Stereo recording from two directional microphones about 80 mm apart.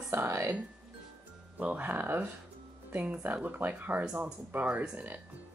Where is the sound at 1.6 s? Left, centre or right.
Centre.